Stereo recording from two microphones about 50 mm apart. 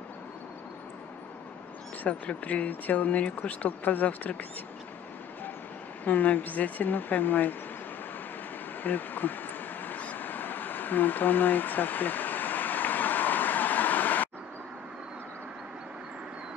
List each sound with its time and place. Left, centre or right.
2.0 s speech: left
6.0 s speech: left
8.8 s a sound: left